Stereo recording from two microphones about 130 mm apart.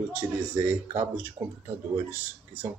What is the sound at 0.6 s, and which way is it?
Speech, 15° right (ahead or behind).